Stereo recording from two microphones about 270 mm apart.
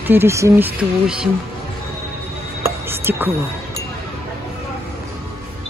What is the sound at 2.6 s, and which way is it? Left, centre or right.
Music, centre.